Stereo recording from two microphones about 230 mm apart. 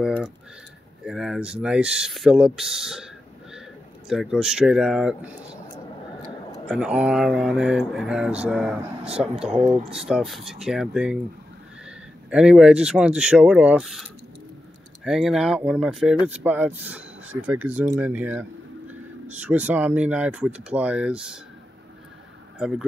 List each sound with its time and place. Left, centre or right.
1.0 s speech: centre
4.1 s speech: centre
6.7 s speech: centre
9.4 s speech: right
9.9 s speech: centre
15.0 s speech: centre
22.6 s speech: centre